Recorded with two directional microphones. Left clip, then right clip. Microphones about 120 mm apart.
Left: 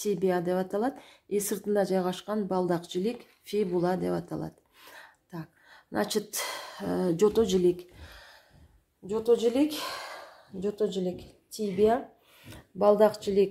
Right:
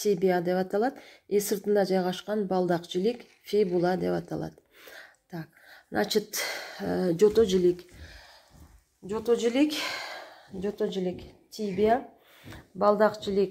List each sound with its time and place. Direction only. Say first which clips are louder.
0.0 s speech: right 3 dB; 5° left (ahead or behind); by 7.8 s 20° left (ahead or behind)
8.0 s a sound: even; 55° left (ahead or behind)
9.0 s speech: left 1 dB; centre (ahead or behind)
12.8 s speech: left 1 dB; 25° left (ahead or behind)